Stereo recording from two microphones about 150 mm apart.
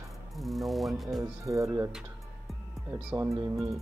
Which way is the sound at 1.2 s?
20° right (ahead or behind).